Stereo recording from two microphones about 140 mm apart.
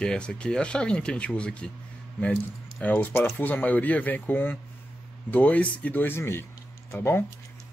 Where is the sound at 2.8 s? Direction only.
10° left (ahead or behind).